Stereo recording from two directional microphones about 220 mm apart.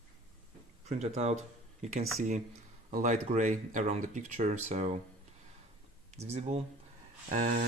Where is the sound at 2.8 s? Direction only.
35° right (ahead or behind).